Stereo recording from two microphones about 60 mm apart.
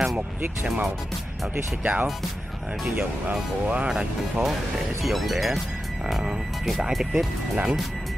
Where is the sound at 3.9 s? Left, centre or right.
Centre.